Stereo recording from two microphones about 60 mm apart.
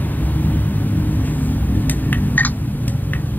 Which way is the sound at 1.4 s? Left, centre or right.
Left.